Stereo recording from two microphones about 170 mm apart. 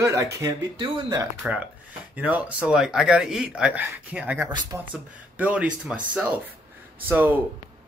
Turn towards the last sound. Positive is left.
turn(degrees=-10)  # may be behind; listen again after turning